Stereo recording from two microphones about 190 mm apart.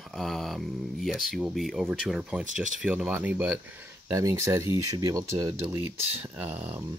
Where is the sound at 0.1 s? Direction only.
Centre (ahead or behind).